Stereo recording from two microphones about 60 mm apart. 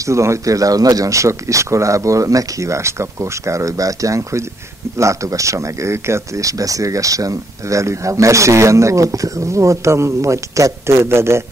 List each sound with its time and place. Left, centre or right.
0.0 s speech: right